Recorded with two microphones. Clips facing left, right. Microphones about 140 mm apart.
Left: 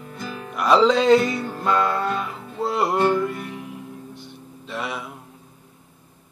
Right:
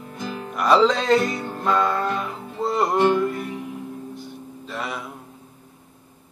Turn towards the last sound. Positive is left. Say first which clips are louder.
# left 1 dB
turn(degrees=0)  # may be behind; listen again after turning